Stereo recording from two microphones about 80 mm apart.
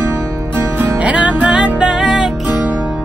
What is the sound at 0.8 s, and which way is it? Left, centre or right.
Music, centre.